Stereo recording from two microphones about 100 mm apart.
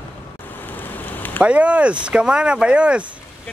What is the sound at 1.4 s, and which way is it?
Speech, 10° right (ahead or behind).